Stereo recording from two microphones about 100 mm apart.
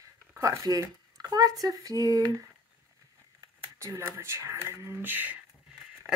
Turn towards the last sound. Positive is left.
turn(degrees=-20)  # may be behind; listen again after turning